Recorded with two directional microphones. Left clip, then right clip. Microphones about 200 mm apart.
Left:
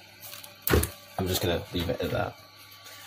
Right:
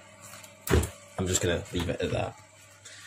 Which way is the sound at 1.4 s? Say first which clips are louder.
Even; 5° right (ahead or behind).